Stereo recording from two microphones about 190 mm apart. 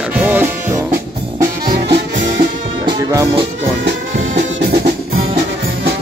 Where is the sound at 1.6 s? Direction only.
50° right (ahead or behind).